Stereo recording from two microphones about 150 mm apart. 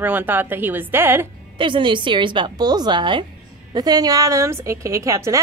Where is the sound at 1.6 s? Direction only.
30° right (ahead or behind).